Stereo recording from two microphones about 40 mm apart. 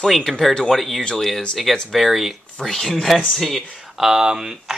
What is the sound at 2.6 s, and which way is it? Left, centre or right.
Speech, centre.